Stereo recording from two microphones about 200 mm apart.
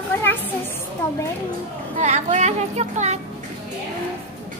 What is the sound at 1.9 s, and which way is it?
Speech, 35° right (ahead or behind).